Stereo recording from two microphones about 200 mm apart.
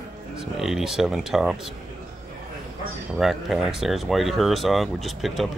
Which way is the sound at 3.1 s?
Centre (ahead or behind).